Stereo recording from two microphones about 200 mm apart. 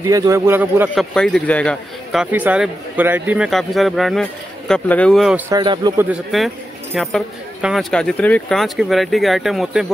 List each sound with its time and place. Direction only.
0.0 s a man's voice: 15° right (ahead or behind)
0.9 s speech: 5° left (ahead or behind)
2.3 s speech: 5° right (ahead or behind)
5.5 s a man's voice: 20° right (ahead or behind)
6.0 s speech: centre (ahead or behind)